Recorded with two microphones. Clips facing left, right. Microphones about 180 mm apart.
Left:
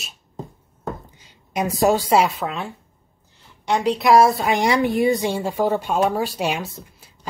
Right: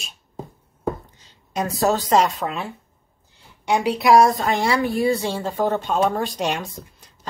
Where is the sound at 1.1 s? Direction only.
10° left (ahead or behind).